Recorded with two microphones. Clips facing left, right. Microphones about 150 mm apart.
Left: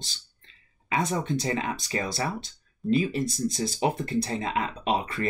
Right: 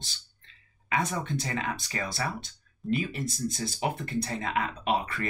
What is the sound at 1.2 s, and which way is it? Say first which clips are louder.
Speech: left 4 dB; 25° left (ahead or behind).